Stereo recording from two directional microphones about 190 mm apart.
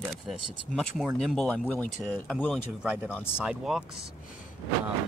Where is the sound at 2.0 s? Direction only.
5° right (ahead or behind).